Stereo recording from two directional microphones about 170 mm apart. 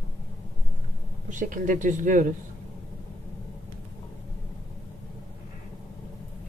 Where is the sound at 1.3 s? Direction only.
50° right (ahead or behind).